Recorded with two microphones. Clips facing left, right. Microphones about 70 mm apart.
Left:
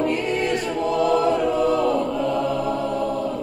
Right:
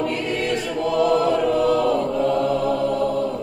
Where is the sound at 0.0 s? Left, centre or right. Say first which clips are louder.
Left 2 dB; left.